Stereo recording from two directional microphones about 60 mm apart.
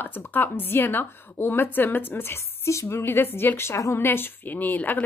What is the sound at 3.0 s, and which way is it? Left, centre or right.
Speech, left.